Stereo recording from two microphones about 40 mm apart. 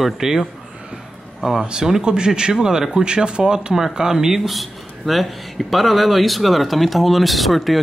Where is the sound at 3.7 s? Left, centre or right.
Centre.